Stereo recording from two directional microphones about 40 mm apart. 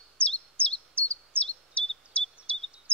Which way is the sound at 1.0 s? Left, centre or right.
Left.